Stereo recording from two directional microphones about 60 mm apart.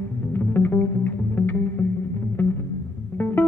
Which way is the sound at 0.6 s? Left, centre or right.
Left.